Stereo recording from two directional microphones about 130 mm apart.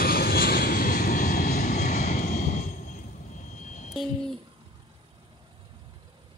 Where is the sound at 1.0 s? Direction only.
90° left; by 3.0 s 70° left (ahead or behind).